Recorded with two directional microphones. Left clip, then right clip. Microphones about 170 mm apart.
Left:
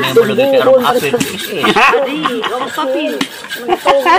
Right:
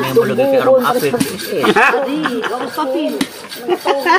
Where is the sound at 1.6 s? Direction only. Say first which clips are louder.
Left 2 dB; 40° left (ahead or behind).